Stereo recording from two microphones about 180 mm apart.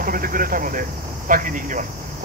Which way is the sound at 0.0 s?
50° right (ahead or behind).